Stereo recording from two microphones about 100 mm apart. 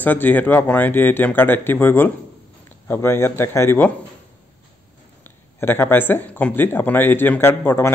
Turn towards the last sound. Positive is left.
turn(degrees=20)  # may be behind; listen again after turning